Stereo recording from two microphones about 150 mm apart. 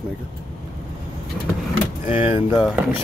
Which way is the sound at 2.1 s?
35° left (ahead or behind).